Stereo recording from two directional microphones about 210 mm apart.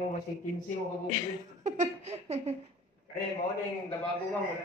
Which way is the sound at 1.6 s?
30° right (ahead or behind).